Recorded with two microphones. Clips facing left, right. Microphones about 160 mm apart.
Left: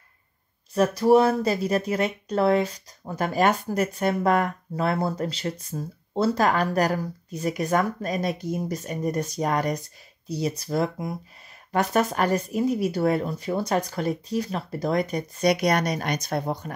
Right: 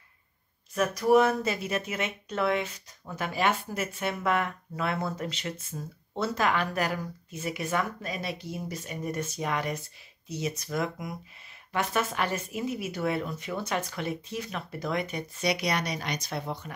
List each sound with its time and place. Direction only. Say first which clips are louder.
0.7 s speech: left 4 dB; 30° left (ahead or behind)